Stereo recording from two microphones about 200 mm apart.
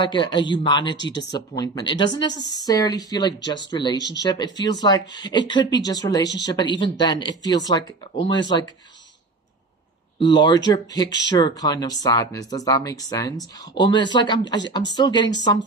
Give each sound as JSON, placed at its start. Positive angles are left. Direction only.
{"t": 0.0, "sound": "speech", "side_deg": 25}
{"t": 0.9, "sound": "speech", "side_deg": 60}
{"t": 1.3, "sound": "speech", "side_deg": 20}
{"t": 10.1, "sound": "speech", "side_deg": 25}